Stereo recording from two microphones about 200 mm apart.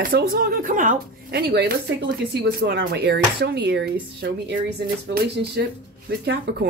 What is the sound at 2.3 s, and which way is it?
Speech, 55° right (ahead or behind).